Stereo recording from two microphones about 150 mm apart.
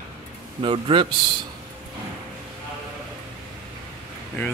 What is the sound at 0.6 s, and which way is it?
Speech, 35° right (ahead or behind).